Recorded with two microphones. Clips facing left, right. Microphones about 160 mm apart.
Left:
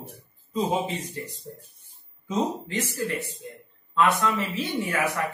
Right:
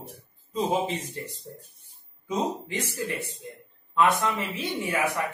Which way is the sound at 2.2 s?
15° right (ahead or behind).